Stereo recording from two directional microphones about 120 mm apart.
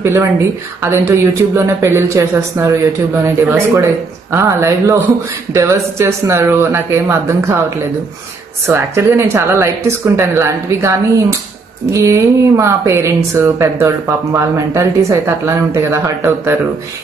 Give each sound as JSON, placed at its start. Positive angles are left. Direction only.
{"t": 0.0, "sound": "speech", "side_deg": -20}
{"t": 8.6, "sound": "speech", "side_deg": -20}